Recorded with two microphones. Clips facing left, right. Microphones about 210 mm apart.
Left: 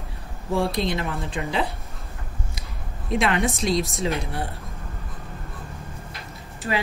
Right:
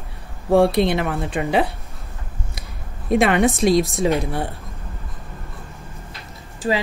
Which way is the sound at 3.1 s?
55° right (ahead or behind).